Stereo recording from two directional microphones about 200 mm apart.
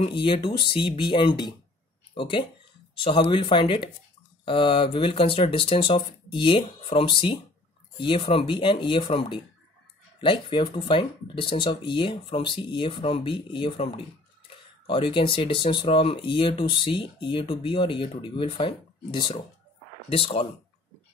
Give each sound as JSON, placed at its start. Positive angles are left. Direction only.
{"t": 0.0, "sound": "speech", "side_deg": 25}